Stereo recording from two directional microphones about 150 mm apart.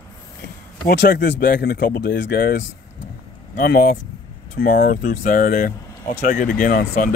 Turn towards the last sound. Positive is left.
turn(degrees=65)  # may be behind; listen again after turning